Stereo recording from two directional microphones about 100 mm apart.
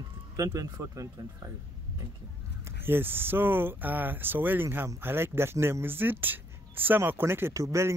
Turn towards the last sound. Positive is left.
turn(degrees=-30)  # may be behind; listen again after turning